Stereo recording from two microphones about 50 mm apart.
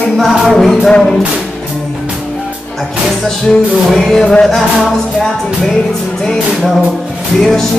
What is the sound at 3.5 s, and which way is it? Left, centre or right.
Music, centre.